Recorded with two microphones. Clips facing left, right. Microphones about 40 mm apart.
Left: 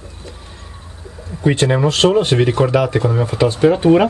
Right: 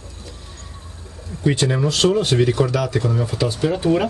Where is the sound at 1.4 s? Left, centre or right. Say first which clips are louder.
Left 4 dB; left.